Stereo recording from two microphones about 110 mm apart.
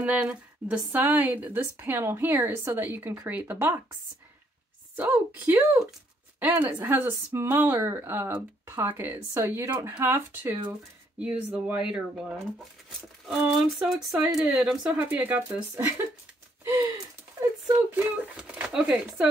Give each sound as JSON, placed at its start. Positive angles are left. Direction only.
{"t": 0.0, "sound": "a woman's voice", "side_deg": -10}
{"t": 4.9, "sound": "a woman's voice", "side_deg": -15}
{"t": 13.4, "sound": "a woman's voice", "side_deg": -5}
{"t": 16.8, "sound": "a sound", "side_deg": -30}
{"t": 17.9, "sound": "a woman's voice", "side_deg": -10}